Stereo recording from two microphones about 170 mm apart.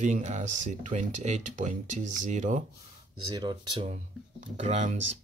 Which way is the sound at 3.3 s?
25° right (ahead or behind).